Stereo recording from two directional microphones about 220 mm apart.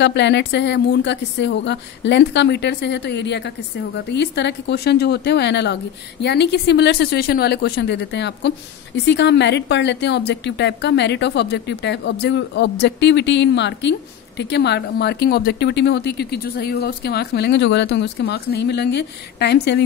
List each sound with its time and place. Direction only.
0.0 s speech: 50° left (ahead or behind)